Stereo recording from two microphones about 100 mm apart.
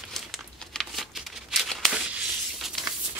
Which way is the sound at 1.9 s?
10° right (ahead or behind).